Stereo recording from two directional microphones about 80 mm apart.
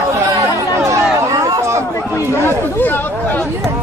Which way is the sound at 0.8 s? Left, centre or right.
Right.